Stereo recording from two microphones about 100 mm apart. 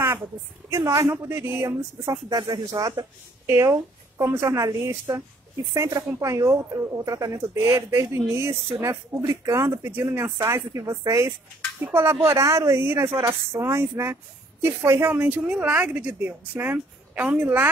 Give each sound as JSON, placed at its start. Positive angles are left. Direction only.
{"t": 0.7, "sound": "speech", "side_deg": -35}
{"t": 1.1, "sound": "a woman's voice", "side_deg": -20}
{"t": 2.2, "sound": "speech", "side_deg": -45}
{"t": 3.4, "sound": "a woman's voice", "side_deg": -30}